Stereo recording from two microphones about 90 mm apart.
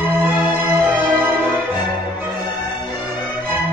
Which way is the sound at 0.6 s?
25° right (ahead or behind).